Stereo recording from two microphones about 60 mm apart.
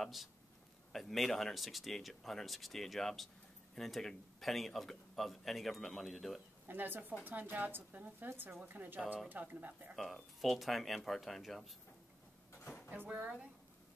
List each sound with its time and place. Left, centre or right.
0.0 s speech: centre
6.7 s speech: right
8.3 s speech: right
8.6 s speech: right
9.9 s speech: centre
12.6 s vehicle: left